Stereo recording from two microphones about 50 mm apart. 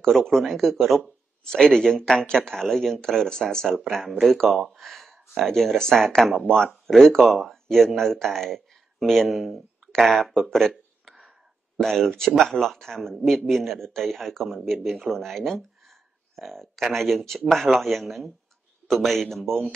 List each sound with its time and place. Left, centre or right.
0.0 s speech: centre
6.4 s speech: left
6.9 s speech: centre
10.7 s a sound: centre
11.8 s speech: centre
12.1 s speech: centre